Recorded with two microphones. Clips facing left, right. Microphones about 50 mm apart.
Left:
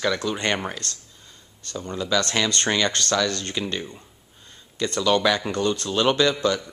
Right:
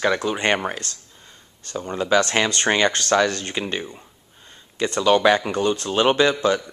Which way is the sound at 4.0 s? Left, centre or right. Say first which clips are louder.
Right 2 dB; centre.